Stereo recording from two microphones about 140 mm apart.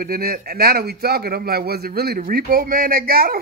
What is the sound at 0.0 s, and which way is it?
A man's voice, 90° right.